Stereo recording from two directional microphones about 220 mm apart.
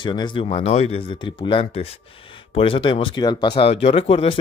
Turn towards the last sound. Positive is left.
turn(degrees=25)  # may be behind; listen again after turning